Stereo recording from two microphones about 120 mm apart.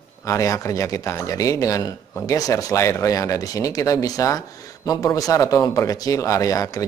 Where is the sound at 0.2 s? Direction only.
25° left (ahead or behind).